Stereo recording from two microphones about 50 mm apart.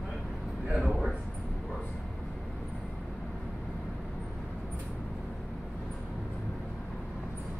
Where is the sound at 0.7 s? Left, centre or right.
Centre.